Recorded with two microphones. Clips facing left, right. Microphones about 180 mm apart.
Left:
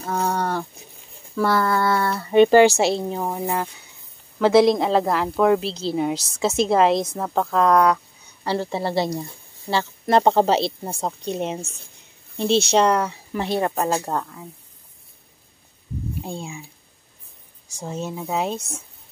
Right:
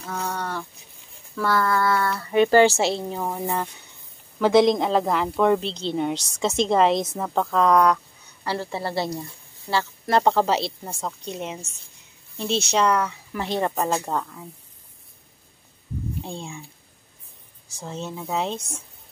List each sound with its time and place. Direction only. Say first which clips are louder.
0.0 s a sound: left 6 dB; 45° left (ahead or behind)
1.4 s speech: left 2 dB; 30° left (ahead or behind)
2.6 s a woman's voice: left 3 dB; 15° left (ahead or behind)
8.5 s speech: left 4 dB; 20° left (ahead or behind)
13.5 s speech: left 1 dB; 10° left (ahead or behind)
16.2 s speech: left 2 dB; 10° left (ahead or behind)
17.6 s speech: left 3 dB; 15° left (ahead or behind)